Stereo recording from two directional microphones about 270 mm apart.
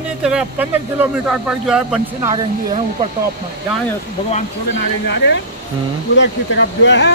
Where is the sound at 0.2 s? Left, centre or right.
Centre.